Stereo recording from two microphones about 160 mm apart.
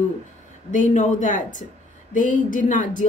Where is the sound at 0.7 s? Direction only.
50° left (ahead or behind).